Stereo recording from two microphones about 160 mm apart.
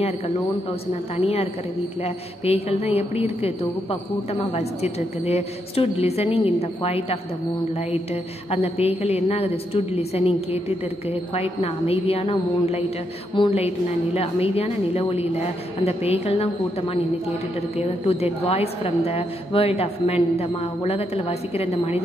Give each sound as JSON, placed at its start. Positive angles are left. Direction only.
{"t": 1.1, "sound": "a woman's voice", "side_deg": 40}